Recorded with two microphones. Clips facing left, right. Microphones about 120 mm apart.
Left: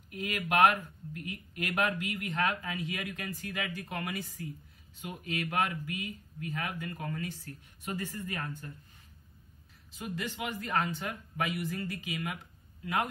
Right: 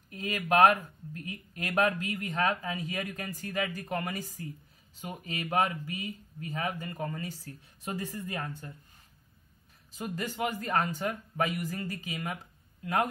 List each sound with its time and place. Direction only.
0.1 s speech: 35° right (ahead or behind)
9.9 s speech: 40° right (ahead or behind)